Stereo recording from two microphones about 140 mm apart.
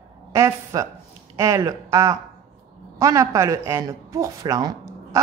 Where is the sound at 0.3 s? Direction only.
20° right (ahead or behind).